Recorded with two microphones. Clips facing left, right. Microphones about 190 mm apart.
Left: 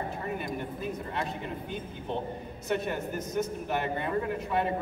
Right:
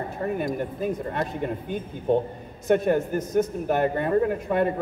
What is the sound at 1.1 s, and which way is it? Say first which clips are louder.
A man's voice: right 6 dB; 50° right (ahead or behind).